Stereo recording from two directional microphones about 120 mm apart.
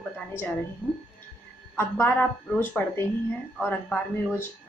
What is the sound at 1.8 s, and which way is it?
A woman's voice, 15° left (ahead or behind).